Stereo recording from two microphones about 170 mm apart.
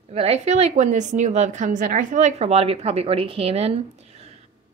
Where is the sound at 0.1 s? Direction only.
35° right (ahead or behind).